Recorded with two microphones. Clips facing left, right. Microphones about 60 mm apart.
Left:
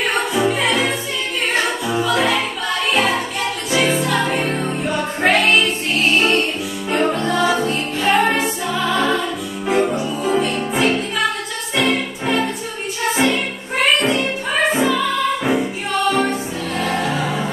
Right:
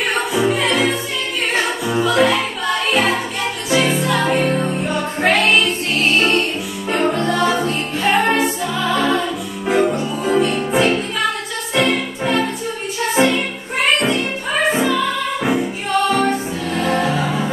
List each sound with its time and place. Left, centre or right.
0.3 s music: centre
1.9 s music: centre
5.2 s music: centre
6.9 s music: centre
9.7 s music: centre
14.8 s music: centre